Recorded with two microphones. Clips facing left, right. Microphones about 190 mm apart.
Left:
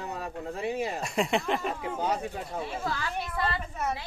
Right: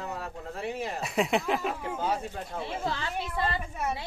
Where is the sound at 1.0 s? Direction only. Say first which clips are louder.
Right 1 dB; centre (ahead or behind).